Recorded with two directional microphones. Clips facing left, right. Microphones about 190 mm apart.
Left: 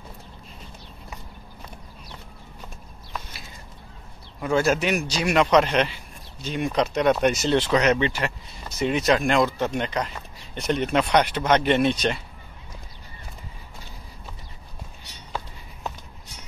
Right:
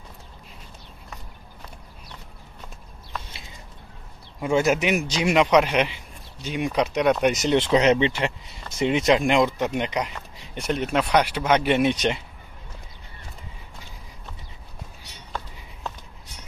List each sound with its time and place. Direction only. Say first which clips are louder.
4.4 s speech: right 1 dB; 20° right (ahead or behind)
7.5 s speech: right 5 dB; 25° right (ahead or behind)